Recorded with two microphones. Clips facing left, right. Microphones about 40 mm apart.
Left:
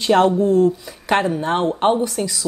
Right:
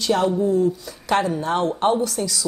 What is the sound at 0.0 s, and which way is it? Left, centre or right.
Speech, left.